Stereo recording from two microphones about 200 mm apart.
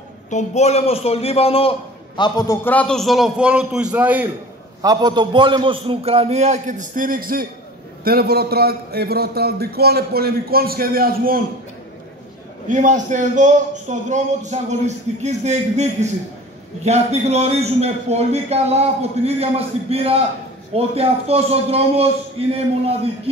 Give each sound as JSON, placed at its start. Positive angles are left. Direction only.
{"t": 0.3, "sound": "a man's voice", "side_deg": 35}
{"t": 4.8, "sound": "a man's voice", "side_deg": -20}
{"t": 12.6, "sound": "a man's voice", "side_deg": -40}